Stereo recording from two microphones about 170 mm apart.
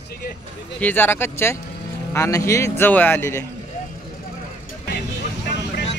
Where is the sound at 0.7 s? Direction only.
10° left (ahead or behind).